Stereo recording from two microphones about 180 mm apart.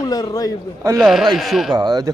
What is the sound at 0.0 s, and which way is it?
Speech, 20° left (ahead or behind).